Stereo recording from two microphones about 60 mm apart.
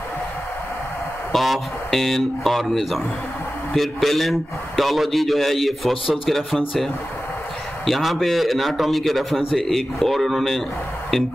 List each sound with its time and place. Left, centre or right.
1.3 s a man's voice: centre